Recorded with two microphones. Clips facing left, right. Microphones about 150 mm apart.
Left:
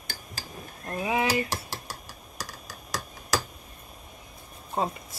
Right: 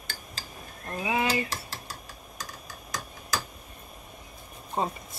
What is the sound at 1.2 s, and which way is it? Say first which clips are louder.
Dishes: left 2 dB; 75° left (ahead or behind).